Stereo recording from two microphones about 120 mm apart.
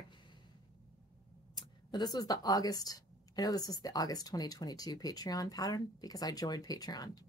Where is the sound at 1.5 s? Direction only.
35° left (ahead or behind).